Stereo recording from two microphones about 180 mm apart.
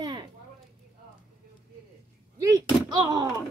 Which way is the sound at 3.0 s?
25° right (ahead or behind).